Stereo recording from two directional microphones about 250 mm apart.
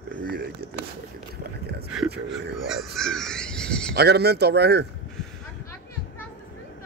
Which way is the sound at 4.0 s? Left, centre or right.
Right.